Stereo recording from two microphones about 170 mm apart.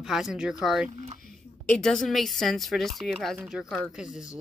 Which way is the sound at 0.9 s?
40° right (ahead or behind).